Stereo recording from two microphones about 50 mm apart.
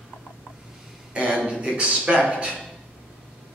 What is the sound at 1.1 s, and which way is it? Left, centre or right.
Speech, right.